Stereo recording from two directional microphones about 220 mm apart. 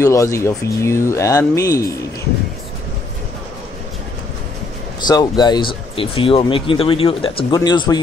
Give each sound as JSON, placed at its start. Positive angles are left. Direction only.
{"t": 0.0, "sound": "speech", "side_deg": 15}
{"t": 5.0, "sound": "speech", "side_deg": 20}